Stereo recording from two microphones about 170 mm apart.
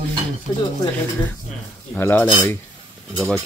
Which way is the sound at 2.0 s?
10° left (ahead or behind).